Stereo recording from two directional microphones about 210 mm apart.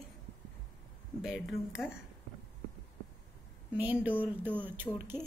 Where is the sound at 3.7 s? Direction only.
5° right (ahead or behind).